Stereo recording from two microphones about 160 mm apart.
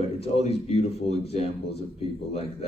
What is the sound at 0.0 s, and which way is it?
Speech, 40° left (ahead or behind).